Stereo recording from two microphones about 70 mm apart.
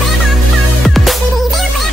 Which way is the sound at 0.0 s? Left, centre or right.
Centre.